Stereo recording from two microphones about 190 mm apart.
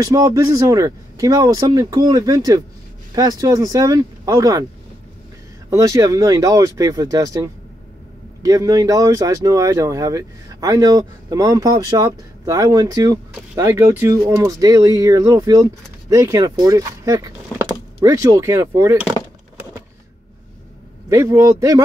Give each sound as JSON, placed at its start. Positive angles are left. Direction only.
{"t": 0.0, "sound": "speech", "side_deg": -15}
{"t": 5.7, "sound": "speech", "side_deg": -15}
{"t": 21.1, "sound": "speech", "side_deg": -15}